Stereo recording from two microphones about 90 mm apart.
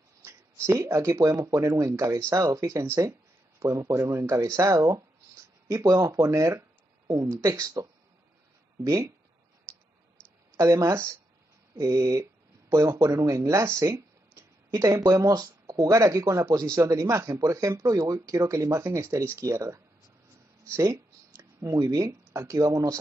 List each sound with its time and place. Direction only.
0.2 s speech: 30° right (ahead or behind)
9.7 s a sound: 10° left (ahead or behind)
10.5 s speech: 35° right (ahead or behind)